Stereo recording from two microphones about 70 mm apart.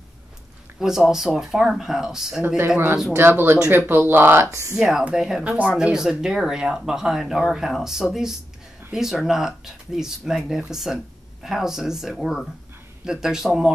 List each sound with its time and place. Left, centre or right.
0.7 s speech: centre
2.4 s speech: right
4.5 s speech: right
4.7 s speech: centre
5.4 s speech: centre
5.8 s speech: centre